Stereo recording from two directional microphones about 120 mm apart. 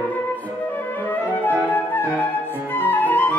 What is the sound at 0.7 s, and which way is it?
Flute, 15° left (ahead or behind).